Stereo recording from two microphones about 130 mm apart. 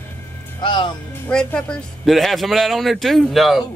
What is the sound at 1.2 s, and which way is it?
A man's voice, 5° left (ahead or behind).